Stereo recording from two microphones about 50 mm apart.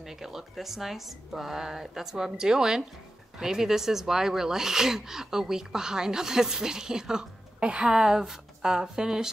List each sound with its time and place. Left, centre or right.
0.0 s a woman's voice: centre
8.0 s speech: centre